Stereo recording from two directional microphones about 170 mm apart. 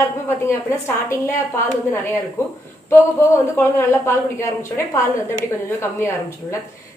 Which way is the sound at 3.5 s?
15° left (ahead or behind).